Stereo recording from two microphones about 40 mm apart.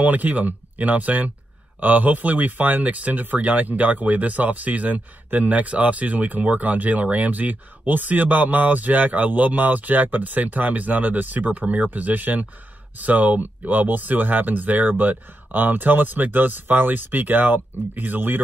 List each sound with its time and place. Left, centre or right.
0.0 s speech: right